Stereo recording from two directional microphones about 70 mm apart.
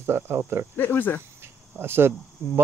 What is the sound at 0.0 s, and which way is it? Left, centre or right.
Speech, right.